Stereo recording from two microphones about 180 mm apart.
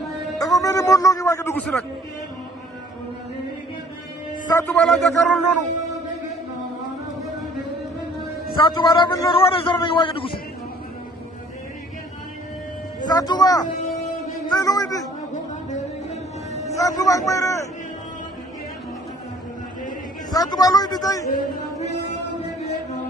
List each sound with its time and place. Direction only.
0.4 s a sound: 20° left (ahead or behind)
4.5 s a man's voice: 20° left (ahead or behind)
4.7 s a man's voice: centre (ahead or behind)
8.5 s a man's voice: 25° left (ahead or behind)
13.0 s a man's voice: 20° left (ahead or behind)
16.7 s a man's voice: 20° left (ahead or behind)
20.2 s a man's voice: 20° left (ahead or behind)
21.3 s speech: 50° left (ahead or behind)